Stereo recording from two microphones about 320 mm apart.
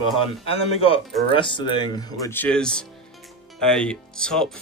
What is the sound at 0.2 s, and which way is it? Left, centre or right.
Speech, centre.